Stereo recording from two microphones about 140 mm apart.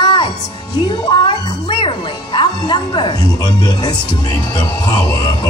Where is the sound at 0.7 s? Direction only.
30° left (ahead or behind).